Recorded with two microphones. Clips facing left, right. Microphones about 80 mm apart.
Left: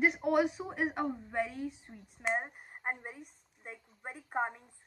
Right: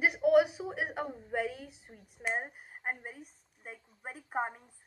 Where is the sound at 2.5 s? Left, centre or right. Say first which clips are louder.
Even; centre.